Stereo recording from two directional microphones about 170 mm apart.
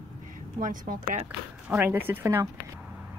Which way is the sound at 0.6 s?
55° right (ahead or behind).